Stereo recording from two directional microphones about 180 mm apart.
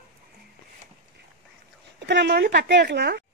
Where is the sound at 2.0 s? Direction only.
70° right (ahead or behind).